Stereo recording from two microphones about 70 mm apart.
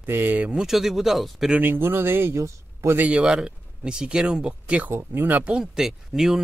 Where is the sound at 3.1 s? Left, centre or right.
Centre.